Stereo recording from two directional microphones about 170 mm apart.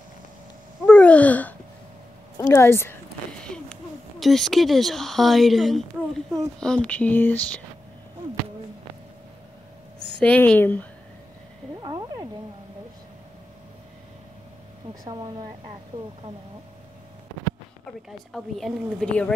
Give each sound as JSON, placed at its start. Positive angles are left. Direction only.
{"t": 0.8, "sound": "babbling", "side_deg": 5}
{"t": 2.3, "sound": "speech", "side_deg": 15}
{"t": 3.4, "sound": "a sound", "side_deg": 5}
{"t": 4.2, "sound": "a woman's voice", "side_deg": 0}
{"t": 10.2, "sound": "speech", "side_deg": 10}
{"t": 11.8, "sound": "cat", "side_deg": -25}
{"t": 18.3, "sound": "a woman's voice", "side_deg": 5}